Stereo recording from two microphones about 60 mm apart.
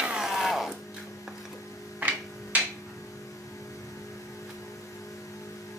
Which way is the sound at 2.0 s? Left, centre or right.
Right.